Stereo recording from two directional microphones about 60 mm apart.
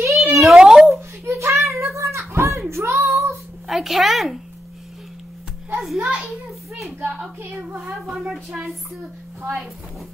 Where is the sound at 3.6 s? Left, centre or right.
Centre.